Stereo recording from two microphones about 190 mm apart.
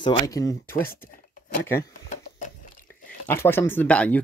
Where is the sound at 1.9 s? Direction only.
40° left (ahead or behind).